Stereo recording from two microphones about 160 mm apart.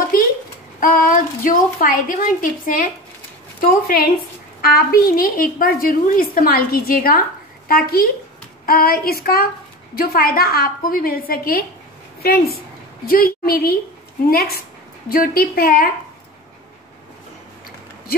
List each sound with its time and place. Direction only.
0.7 s a woman's voice: 60° left (ahead or behind)